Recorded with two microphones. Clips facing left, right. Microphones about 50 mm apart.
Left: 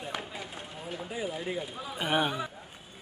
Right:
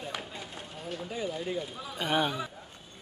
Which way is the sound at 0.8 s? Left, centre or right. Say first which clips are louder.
Right 1 dB; centre.